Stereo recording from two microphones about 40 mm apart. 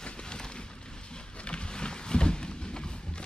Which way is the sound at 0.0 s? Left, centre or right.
Left.